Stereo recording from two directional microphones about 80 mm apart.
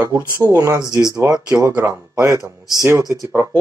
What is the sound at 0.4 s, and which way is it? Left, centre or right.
Speech, right.